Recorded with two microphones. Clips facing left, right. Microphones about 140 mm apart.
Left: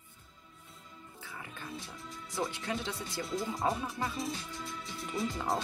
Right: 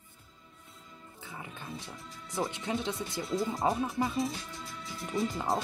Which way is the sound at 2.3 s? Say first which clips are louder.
Right 3 dB; 20° right (ahead or behind).